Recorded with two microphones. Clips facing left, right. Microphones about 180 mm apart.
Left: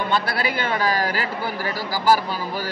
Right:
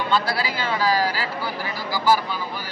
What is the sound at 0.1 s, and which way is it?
Speech, 55° left (ahead or behind).